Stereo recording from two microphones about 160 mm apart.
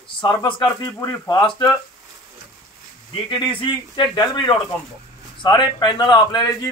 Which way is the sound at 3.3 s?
30° left (ahead or behind).